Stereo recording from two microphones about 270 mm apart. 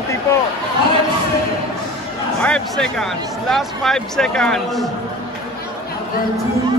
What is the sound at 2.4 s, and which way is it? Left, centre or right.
A man's voice, centre.